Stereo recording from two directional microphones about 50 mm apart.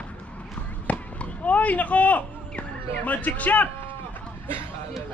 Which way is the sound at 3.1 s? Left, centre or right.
Left.